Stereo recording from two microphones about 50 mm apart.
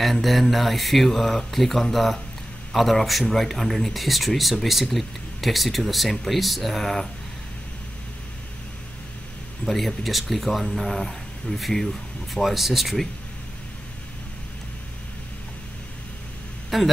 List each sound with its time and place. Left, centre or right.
0.0 s speech: centre
9.7 s speech: centre
16.7 s speech: centre